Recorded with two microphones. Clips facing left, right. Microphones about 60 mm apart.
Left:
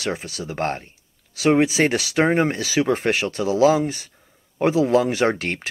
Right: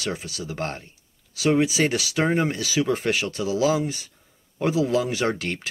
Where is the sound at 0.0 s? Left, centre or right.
Left.